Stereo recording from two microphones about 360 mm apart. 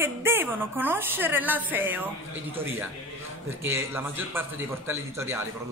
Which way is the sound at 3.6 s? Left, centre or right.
Centre.